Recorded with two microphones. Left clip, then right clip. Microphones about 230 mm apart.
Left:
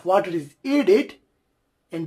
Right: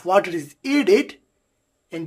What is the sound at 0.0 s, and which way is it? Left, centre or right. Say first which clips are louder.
Speech: right 2 dB; centre.